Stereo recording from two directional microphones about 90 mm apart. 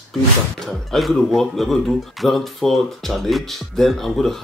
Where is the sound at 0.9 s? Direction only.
Centre (ahead or behind).